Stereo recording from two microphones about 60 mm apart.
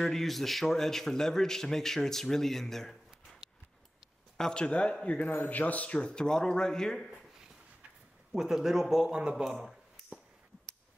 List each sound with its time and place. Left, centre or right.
0.0 s a man's voice: centre
4.4 s a man's voice: centre
8.3 s speech: centre
9.4 s a sound: centre